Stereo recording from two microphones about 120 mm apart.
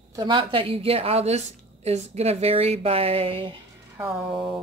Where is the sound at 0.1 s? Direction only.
40° right (ahead or behind).